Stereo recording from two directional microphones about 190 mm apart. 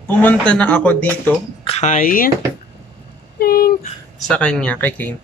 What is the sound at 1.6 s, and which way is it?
Speech, 35° left (ahead or behind).